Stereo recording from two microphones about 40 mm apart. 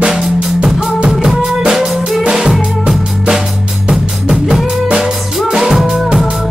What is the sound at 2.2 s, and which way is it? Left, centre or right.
Drum kit, centre.